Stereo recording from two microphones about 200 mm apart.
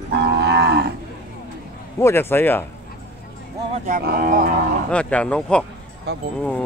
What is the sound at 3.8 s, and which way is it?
Speech, 45° right (ahead or behind).